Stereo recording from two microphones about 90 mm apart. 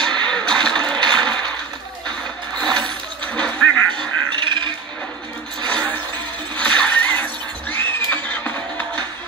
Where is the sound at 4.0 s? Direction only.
65° right (ahead or behind).